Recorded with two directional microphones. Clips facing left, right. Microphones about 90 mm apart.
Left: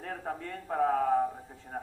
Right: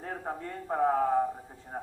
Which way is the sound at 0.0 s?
25° right (ahead or behind).